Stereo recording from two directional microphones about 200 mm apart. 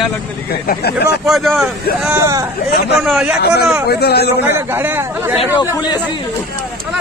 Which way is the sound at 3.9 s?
55° left (ahead or behind).